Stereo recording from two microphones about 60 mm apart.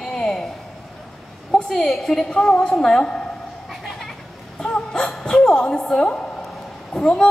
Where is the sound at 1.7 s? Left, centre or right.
Centre.